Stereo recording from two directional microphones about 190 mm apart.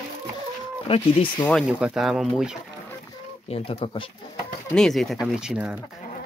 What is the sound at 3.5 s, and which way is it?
Speech, 30° left (ahead or behind).